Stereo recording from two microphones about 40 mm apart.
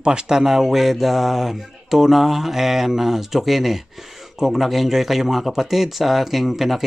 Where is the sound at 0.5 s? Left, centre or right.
Centre.